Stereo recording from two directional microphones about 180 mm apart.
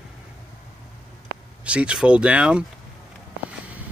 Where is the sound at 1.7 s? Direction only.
5° right (ahead or behind).